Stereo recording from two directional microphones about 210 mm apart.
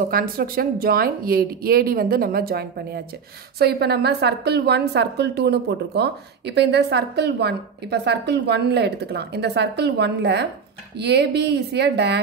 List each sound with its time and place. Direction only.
0.1 s a woman's voice: 45° right (ahead or behind)